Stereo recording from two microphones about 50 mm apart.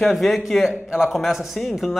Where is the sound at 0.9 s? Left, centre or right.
Centre.